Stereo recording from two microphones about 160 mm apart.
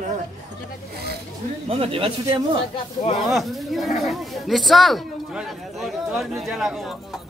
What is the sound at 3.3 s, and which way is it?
Speech, centre (ahead or behind).